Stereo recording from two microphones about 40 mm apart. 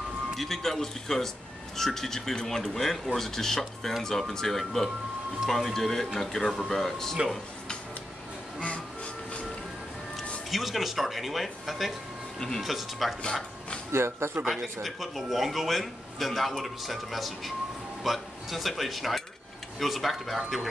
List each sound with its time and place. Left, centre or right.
0.4 s speech: centre
8.5 s music: left
10.5 s a man's voice: centre
13.2 s speech: left
13.9 s speech: right
14.5 s a man's voice: centre